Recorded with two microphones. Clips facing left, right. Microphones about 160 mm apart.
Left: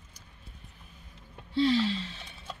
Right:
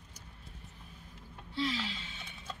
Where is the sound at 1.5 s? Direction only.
35° left (ahead or behind).